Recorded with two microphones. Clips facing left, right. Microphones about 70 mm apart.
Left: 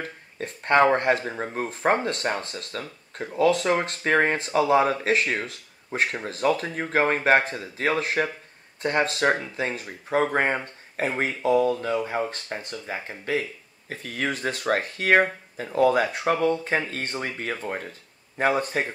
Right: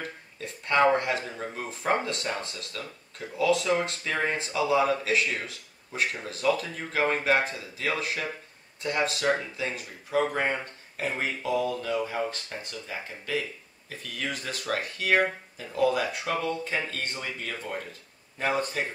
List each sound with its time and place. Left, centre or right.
0.0 s speech: left